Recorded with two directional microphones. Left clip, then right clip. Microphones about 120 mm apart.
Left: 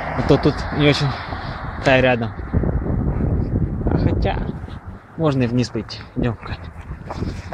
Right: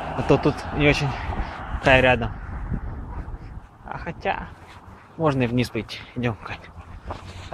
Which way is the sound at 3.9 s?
35° left (ahead or behind).